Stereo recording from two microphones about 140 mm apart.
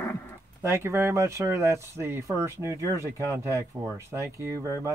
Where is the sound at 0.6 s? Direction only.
20° right (ahead or behind).